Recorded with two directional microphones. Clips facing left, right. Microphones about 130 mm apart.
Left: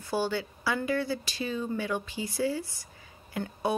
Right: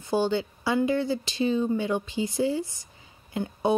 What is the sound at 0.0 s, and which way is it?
Speech, 20° right (ahead or behind).